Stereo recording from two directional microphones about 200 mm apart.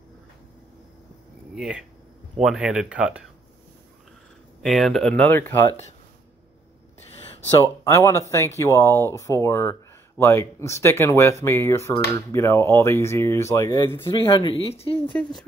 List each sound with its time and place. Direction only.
1.5 s speech: 5° right (ahead or behind)
4.6 s speech: centre (ahead or behind)
7.8 s speech: 15° left (ahead or behind)
14.1 s speech: 25° left (ahead or behind)
15.2 s speech: 5° left (ahead or behind)